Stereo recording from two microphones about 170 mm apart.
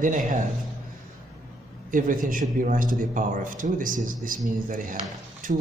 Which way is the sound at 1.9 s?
50° right (ahead or behind).